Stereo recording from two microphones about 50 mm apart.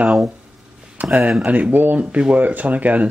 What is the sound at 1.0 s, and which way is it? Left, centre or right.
Speech, centre.